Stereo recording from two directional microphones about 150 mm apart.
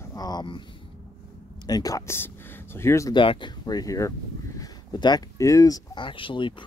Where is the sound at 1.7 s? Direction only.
25° left (ahead or behind).